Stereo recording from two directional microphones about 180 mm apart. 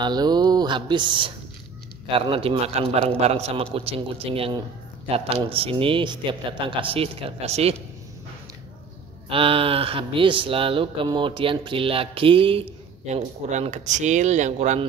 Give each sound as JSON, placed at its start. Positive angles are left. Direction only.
{"t": 0.0, "sound": "speech", "side_deg": -25}
{"t": 9.3, "sound": "speech", "side_deg": -30}